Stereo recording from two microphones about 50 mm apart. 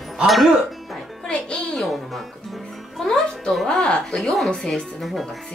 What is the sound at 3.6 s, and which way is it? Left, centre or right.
A woman's voice, centre.